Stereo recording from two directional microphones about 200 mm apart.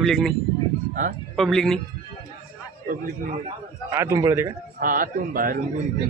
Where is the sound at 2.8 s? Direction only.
45° right (ahead or behind).